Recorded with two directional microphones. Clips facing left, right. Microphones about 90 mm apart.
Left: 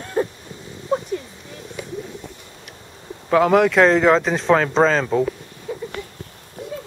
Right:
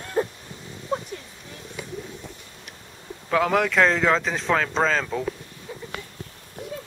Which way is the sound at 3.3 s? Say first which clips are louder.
Left 6 dB; 15° left (ahead or behind).